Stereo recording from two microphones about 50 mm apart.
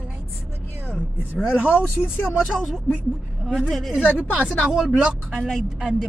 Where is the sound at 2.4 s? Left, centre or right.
Centre.